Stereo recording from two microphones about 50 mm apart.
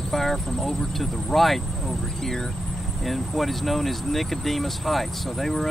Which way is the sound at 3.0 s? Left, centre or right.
Centre.